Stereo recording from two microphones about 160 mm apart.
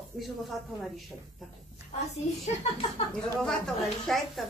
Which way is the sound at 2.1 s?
45° left (ahead or behind).